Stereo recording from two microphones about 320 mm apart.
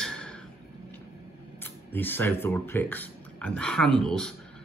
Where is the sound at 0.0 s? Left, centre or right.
Centre.